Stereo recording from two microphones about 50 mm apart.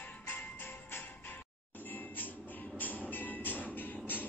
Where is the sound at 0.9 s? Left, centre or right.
Left.